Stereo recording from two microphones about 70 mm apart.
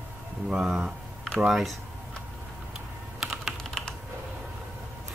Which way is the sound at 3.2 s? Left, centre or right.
Centre.